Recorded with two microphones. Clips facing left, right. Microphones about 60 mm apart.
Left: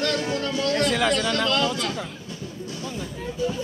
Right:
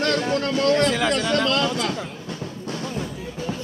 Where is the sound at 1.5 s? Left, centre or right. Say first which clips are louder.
Right 1 dB; right.